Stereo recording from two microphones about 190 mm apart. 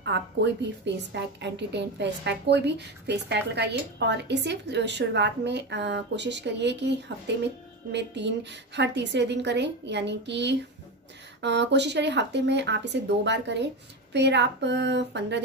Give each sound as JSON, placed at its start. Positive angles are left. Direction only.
{"t": 0.0, "sound": "a woman's voice", "side_deg": -65}